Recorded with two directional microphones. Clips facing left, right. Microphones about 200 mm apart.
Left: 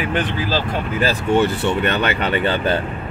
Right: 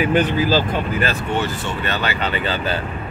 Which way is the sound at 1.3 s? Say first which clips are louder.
Left 6 dB; 60° left (ahead or behind).